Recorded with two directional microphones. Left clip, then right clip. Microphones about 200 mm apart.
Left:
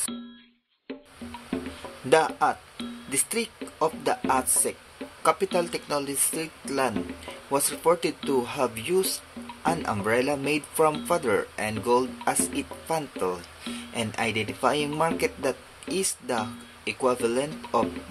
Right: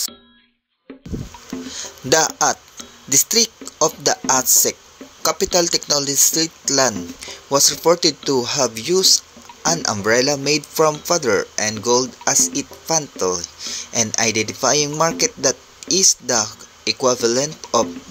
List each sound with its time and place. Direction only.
2.0 s speech: 25° right (ahead or behind)